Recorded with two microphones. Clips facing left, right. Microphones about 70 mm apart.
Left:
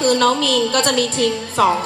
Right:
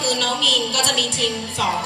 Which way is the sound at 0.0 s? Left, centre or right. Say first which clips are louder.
Left 7 dB; left.